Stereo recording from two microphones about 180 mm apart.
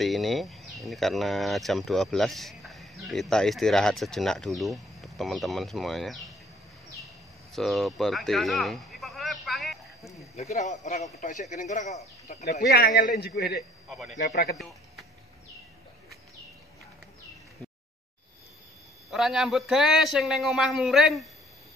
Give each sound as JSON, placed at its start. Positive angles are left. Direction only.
{"t": 0.0, "sound": "speech", "side_deg": 0}
{"t": 7.5, "sound": "a sound", "side_deg": 0}
{"t": 10.3, "sound": "speech", "side_deg": 40}
{"t": 12.5, "sound": "a man's voice", "side_deg": 55}
{"t": 13.8, "sound": "a man's voice", "side_deg": 0}
{"t": 14.3, "sound": "a man's voice", "side_deg": 60}
{"t": 14.6, "sound": "a sound", "side_deg": 0}
{"t": 19.0, "sound": "speech", "side_deg": 0}